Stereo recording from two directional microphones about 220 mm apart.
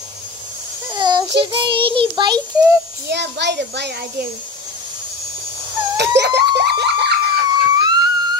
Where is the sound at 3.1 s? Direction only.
50° right (ahead or behind).